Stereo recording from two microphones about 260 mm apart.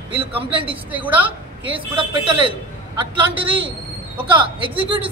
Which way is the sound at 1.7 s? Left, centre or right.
Centre.